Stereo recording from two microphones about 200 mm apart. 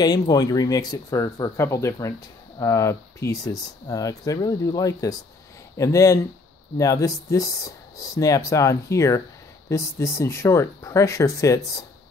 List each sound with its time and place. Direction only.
0.0 s speech: 20° left (ahead or behind)